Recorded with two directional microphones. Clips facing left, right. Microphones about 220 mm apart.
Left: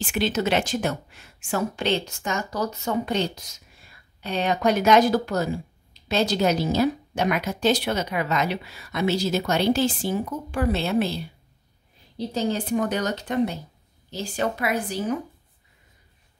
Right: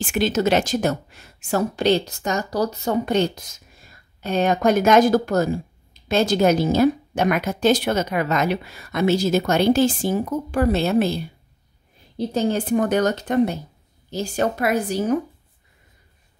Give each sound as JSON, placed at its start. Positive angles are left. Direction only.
{"t": 0.0, "sound": "a woman's voice", "side_deg": -45}
{"t": 12.2, "sound": "a woman's voice", "side_deg": -50}